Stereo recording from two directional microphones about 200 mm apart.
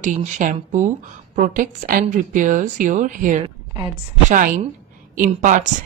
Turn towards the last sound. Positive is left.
turn(degrees=-40)  # may be behind; listen again after turning